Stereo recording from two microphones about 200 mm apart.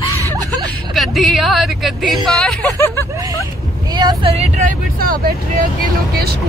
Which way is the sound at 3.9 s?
20° right (ahead or behind).